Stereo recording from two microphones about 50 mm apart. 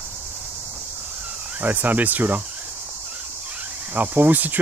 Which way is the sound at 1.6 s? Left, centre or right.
Right.